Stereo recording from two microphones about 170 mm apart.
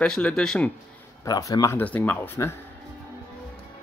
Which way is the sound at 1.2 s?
20° left (ahead or behind).